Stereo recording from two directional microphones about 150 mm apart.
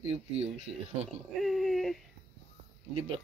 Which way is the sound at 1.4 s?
Centre (ahead or behind).